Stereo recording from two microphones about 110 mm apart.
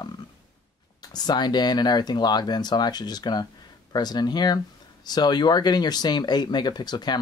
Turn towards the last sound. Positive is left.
turn(degrees=40)  # may be behind; listen again after turning